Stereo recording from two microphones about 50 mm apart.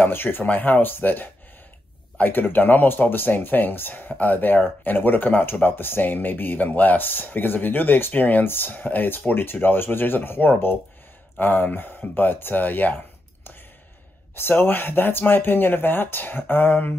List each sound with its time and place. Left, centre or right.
0.0 s speech: left